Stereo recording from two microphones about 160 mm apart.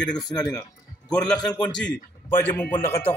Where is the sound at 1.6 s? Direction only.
5° left (ahead or behind).